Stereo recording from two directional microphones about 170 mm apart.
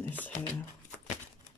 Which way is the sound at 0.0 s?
10° left (ahead or behind).